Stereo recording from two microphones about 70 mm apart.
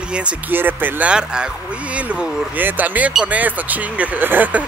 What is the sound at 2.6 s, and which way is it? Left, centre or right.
Speech, right.